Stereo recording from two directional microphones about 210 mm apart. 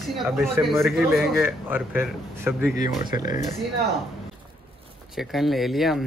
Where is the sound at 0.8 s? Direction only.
10° right (ahead or behind).